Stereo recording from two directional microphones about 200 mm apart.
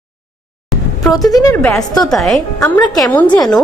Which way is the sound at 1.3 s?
15° left (ahead or behind).